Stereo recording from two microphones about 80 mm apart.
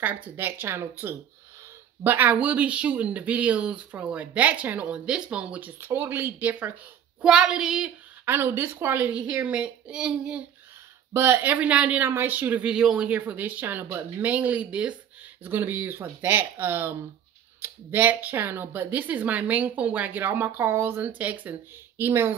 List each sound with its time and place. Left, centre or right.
0.0 s speech: right
7.2 s speech: centre
8.3 s speech: right; by 10.4 s centre
11.1 s speech: right
15.4 s speech: right